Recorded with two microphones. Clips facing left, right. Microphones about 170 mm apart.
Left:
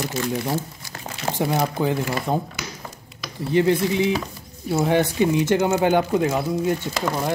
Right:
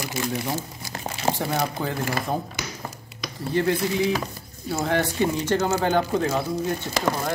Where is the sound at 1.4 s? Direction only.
20° left (ahead or behind).